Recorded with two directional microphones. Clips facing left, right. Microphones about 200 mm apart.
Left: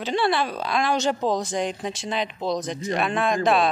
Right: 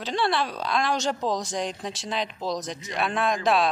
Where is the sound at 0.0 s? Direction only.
5° left (ahead or behind).